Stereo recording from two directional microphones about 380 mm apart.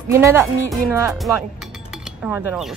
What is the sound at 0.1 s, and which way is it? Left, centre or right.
Speech, centre.